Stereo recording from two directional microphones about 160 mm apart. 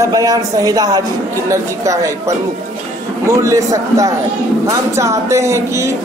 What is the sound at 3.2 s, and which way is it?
A man's voice, 20° right (ahead or behind).